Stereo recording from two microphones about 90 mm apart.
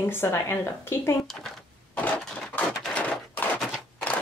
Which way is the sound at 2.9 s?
15° left (ahead or behind).